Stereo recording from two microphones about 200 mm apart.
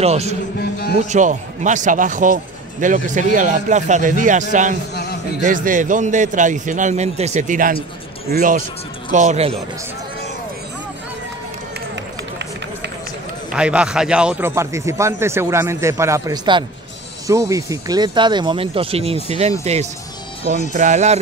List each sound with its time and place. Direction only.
0.0 s speech: 30° right (ahead or behind)
0.6 s speech: 50° left (ahead or behind)
1.0 s speech: 35° right (ahead or behind)
13.5 s a man's voice: 5° right (ahead or behind); by 21.2 s 35° right (ahead or behind)